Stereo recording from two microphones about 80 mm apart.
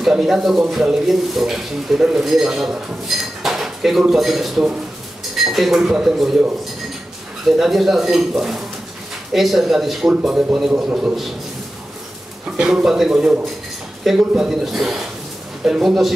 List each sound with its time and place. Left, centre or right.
0.0 s speech: centre
7.4 s speech: centre
12.5 s speech: centre